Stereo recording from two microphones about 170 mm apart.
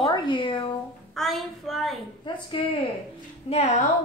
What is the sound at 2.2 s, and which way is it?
Speech, 30° left (ahead or behind).